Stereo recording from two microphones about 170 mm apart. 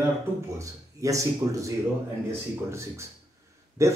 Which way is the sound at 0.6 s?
20° right (ahead or behind).